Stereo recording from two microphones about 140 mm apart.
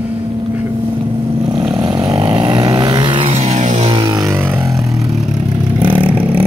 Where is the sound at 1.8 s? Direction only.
30° right (ahead or behind); by 3.9 s 55° right (ahead or behind).